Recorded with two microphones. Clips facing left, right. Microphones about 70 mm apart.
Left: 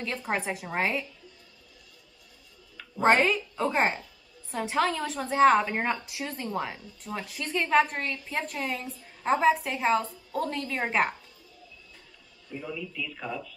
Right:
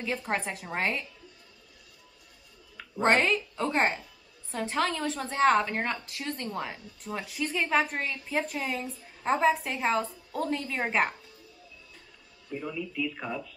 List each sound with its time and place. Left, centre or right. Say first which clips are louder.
0.0 s a woman's voice: even; centre
3.0 s a woman's voice: left 2 dB; centre
12.9 s speech: right 3 dB; right